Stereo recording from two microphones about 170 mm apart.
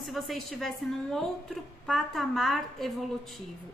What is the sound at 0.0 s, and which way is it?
A woman's voice, centre (ahead or behind).